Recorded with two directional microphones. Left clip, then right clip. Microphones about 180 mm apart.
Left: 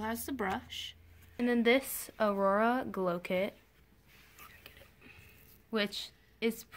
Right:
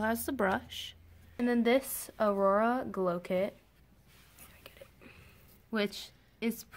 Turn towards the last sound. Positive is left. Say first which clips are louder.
# left 2 dB
turn(degrees=0)  # may be behind; listen again after turning